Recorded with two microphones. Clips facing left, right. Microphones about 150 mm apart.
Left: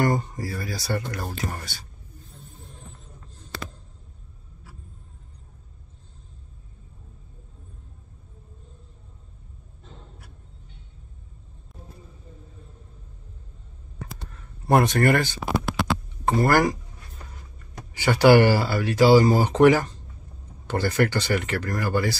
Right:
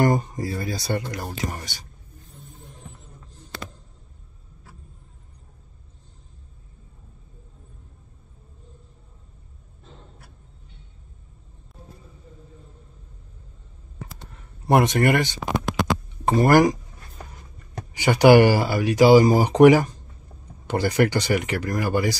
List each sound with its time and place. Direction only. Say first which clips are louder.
0.0 s speech: right 3 dB; 20° right (ahead or behind)
14.7 s speech: right 1 dB; 20° right (ahead or behind)
17.9 s speech: right 2 dB; 15° right (ahead or behind)